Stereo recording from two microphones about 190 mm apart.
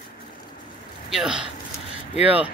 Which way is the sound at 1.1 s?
5° right (ahead or behind).